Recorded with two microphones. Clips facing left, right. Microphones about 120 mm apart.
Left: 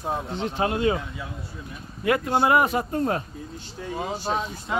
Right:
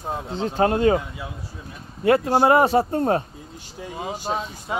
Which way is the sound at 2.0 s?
35° right (ahead or behind).